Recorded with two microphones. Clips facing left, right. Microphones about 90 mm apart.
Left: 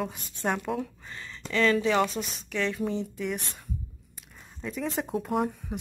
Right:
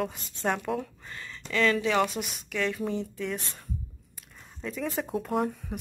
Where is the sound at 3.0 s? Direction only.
15° left (ahead or behind).